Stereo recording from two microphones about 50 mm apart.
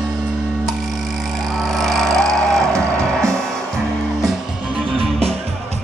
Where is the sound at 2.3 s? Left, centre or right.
Right.